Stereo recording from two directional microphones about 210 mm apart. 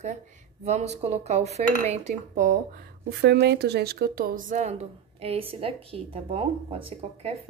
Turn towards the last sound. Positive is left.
turn(degrees=-30)  # may be behind; listen again after turning